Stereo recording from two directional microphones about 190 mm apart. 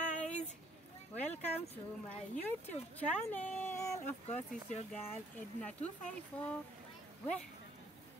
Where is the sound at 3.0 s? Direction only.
10° left (ahead or behind).